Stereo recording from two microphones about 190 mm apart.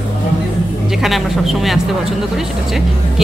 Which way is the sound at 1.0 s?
Centre (ahead or behind).